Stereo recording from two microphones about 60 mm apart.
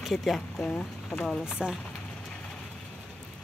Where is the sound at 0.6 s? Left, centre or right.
Left.